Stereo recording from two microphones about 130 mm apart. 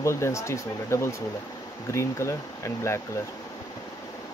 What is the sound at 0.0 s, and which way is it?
Speech, 20° left (ahead or behind).